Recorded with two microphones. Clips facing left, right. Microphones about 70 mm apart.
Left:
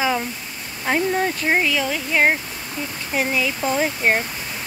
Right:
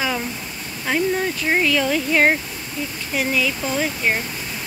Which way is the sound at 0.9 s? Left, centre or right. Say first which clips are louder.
Even; left.